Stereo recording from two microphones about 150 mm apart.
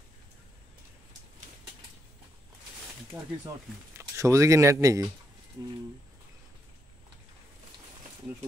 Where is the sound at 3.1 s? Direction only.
Centre (ahead or behind).